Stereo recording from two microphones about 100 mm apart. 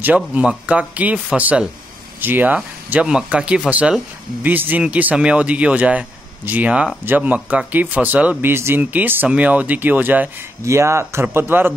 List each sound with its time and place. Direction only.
0.0 s speech: 15° right (ahead or behind)
10.6 s speech: 30° right (ahead or behind)